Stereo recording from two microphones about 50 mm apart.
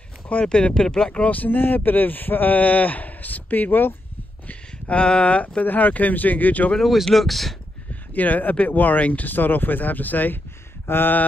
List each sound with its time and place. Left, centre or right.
0.3 s speech: left
1.3 s speech: left
4.5 s a sound: left
5.0 s speech: left
6.8 s speech: centre
7.9 s speech: left
10.9 s a sound: left